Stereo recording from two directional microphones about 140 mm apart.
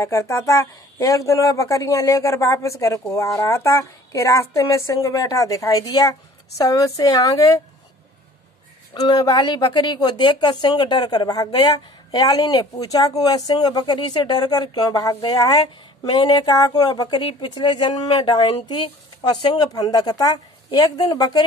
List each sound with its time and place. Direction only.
0.0 s speech: 20° left (ahead or behind)
8.9 s speech: 30° left (ahead or behind)